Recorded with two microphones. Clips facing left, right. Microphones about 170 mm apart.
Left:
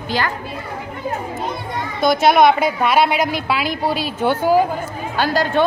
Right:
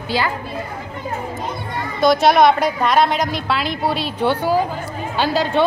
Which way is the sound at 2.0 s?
Centre (ahead or behind).